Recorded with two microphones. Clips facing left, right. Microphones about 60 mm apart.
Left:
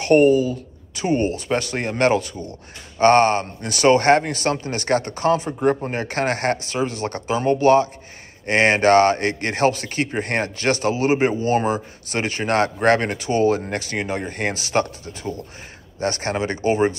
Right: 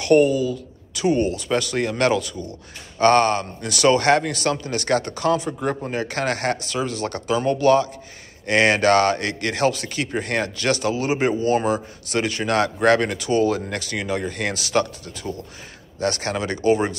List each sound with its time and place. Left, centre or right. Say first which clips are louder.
0.0 s speech: left 2 dB; left